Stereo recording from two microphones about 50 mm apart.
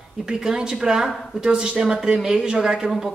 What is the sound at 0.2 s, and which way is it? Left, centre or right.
Speech, centre.